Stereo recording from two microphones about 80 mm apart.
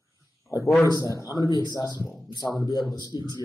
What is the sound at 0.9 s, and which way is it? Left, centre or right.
A man's voice, left.